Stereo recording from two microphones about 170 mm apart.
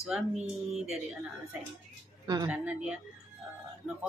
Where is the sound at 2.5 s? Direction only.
10° right (ahead or behind).